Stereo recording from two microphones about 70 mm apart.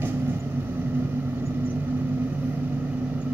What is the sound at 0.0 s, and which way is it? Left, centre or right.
Vehicle, right.